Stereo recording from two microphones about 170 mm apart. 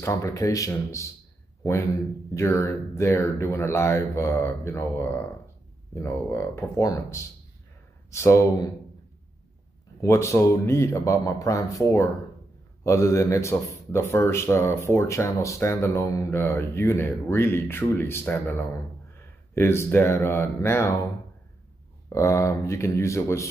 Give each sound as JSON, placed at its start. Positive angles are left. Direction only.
{"t": 0.0, "sound": "speech", "side_deg": 15}
{"t": 9.9, "sound": "speech", "side_deg": 15}
{"t": 22.1, "sound": "speech", "side_deg": 15}